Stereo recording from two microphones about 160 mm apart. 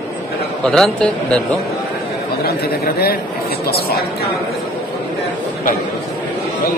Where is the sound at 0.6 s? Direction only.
5° left (ahead or behind).